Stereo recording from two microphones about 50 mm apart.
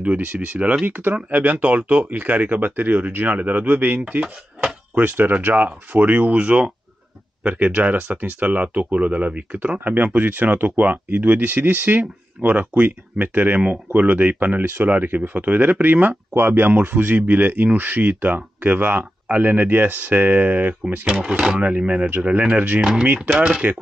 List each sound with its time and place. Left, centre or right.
0.0 s speech: right
21.1 s speech: centre
21.5 s speech: right
22.8 s speech: centre